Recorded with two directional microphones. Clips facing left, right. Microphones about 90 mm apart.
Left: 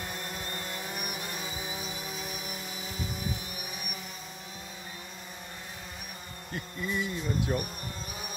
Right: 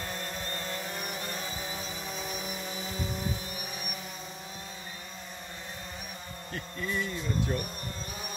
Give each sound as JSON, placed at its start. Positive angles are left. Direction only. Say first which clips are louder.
{"t": 0.0, "sound": "vehicle", "louder": "right 1 dB", "side_deg": 10}
{"t": 6.5, "sound": "speech", "louder": "even", "side_deg": 15}